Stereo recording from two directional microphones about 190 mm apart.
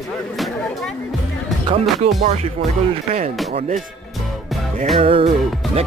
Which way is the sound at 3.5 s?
40° right (ahead or behind).